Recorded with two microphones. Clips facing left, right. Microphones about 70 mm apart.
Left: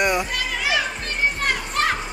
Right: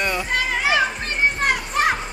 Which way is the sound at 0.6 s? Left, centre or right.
Right.